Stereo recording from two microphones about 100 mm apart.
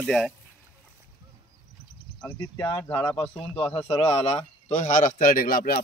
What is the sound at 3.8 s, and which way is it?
Speech, 90° left.